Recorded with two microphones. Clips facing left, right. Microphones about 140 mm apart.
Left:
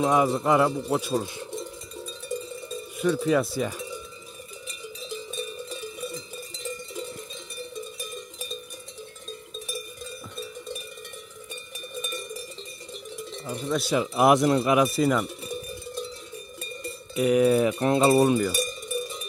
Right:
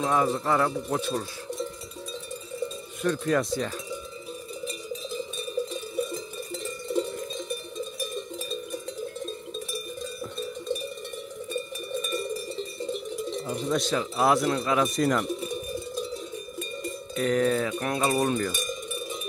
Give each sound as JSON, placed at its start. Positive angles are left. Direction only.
{"t": 0.0, "sound": "speech", "side_deg": 15}
{"t": 3.0, "sound": "speech", "side_deg": 5}
{"t": 13.5, "sound": "speech", "side_deg": 0}
{"t": 13.8, "sound": "speech", "side_deg": 15}
{"t": 14.8, "sound": "speech", "side_deg": 5}
{"t": 17.1, "sound": "speech", "side_deg": 10}
{"t": 17.7, "sound": "a sound", "side_deg": 30}
{"t": 18.2, "sound": "speech", "side_deg": 10}